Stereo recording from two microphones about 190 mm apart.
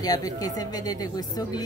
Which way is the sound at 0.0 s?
20° left (ahead or behind).